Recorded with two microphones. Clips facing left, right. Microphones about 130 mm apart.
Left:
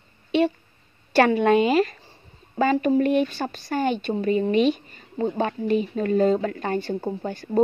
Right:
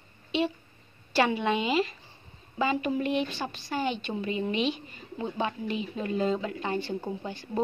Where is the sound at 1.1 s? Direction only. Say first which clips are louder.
Left 8 dB; 50° left (ahead or behind).